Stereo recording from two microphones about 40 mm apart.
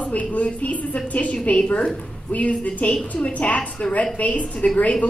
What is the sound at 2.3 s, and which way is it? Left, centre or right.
A woman's voice, left.